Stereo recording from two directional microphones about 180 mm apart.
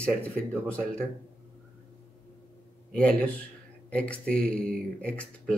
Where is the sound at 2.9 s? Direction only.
5° left (ahead or behind).